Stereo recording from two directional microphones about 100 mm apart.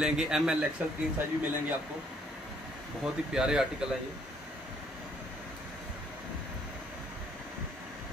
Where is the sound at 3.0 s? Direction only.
5° right (ahead or behind).